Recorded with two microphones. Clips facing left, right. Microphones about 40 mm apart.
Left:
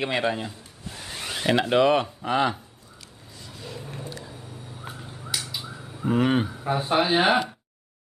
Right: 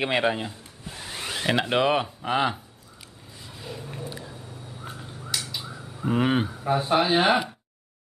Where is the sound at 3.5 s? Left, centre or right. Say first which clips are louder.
Even; centre.